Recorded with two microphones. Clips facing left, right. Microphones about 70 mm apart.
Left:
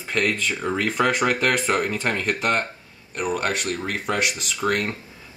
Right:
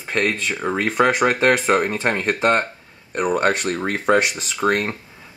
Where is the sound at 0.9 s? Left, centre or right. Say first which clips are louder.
Right 5 dB; centre.